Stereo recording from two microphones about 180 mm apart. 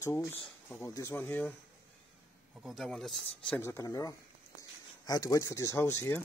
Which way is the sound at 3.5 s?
15° left (ahead or behind).